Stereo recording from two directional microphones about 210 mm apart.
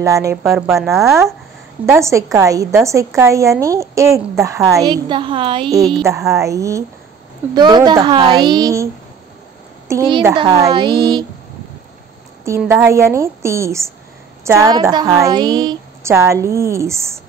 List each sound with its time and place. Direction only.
0.0 s a woman's voice: 15° right (ahead or behind)
0.4 s speech: 5° right (ahead or behind)
0.8 s a woman's voice: 15° right (ahead or behind)
9.8 s a woman's voice: 20° right (ahead or behind)
12.4 s a woman's voice: 10° right (ahead or behind)